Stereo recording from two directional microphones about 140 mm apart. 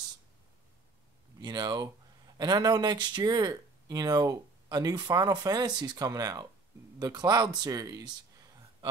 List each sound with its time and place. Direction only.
1.4 s speech: 30° right (ahead or behind)